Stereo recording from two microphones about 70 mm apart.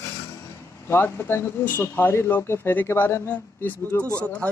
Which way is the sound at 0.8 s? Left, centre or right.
Left.